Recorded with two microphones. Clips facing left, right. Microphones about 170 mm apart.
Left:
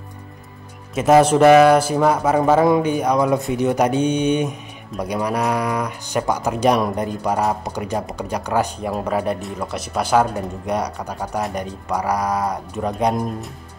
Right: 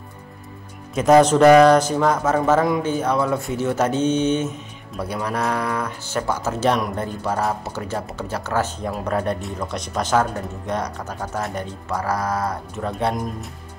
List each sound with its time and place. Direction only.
0.9 s speech: 5° left (ahead or behind)